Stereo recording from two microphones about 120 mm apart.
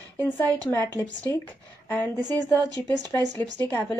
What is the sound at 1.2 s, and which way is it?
Speech, 15° left (ahead or behind).